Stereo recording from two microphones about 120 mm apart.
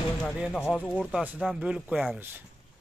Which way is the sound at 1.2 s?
10° right (ahead or behind).